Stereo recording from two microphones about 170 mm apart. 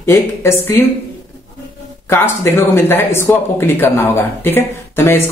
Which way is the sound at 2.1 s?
15° left (ahead or behind).